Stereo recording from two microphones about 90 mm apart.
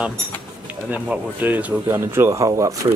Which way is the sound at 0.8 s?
15° right (ahead or behind).